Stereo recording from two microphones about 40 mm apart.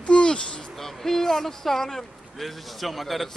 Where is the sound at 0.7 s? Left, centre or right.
Centre.